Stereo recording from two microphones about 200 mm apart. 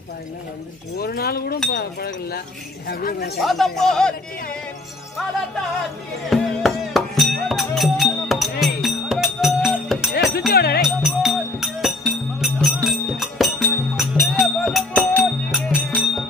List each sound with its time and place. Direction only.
0.9 s speech: 50° left (ahead or behind)
3.3 s speech: centre (ahead or behind)
6.3 s music: centre (ahead or behind)
10.5 s music: 50° left (ahead or behind)
10.8 s music: centre (ahead or behind)